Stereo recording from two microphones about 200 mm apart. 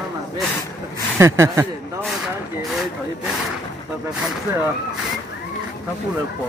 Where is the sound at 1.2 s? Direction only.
15° right (ahead or behind).